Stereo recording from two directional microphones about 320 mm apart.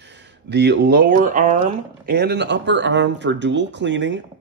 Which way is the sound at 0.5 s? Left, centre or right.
Right.